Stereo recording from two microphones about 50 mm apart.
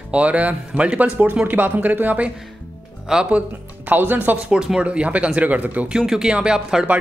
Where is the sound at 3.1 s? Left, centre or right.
Centre.